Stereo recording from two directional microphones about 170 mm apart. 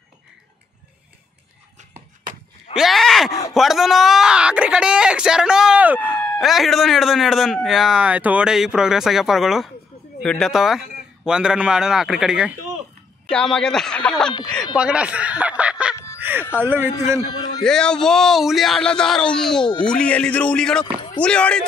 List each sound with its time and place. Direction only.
2.7 s groan: centre (ahead or behind)
3.5 s speech: centre (ahead or behind)
5.9 s a sound: 10° left (ahead or behind)
6.4 s speech: centre (ahead or behind)
14.8 s music: 5° right (ahead or behind)
16.2 s a sound: 10° right (ahead or behind)
16.5 s speech: 10° right (ahead or behind)
17.3 s a man's voice: 25° left (ahead or behind)
17.6 s a man's voice: 5° left (ahead or behind)